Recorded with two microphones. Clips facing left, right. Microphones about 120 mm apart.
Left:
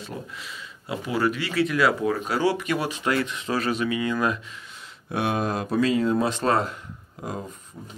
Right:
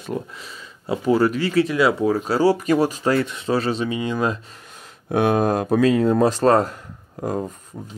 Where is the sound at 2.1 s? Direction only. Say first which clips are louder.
Right 5 dB; 35° right (ahead or behind).